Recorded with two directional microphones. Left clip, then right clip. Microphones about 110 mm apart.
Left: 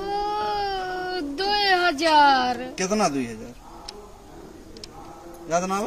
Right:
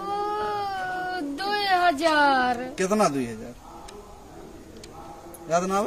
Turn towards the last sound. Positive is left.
turn(degrees=-25)  # may be behind; listen again after turning